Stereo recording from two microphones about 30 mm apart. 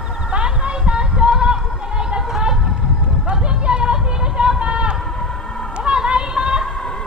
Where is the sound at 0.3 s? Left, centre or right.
Right.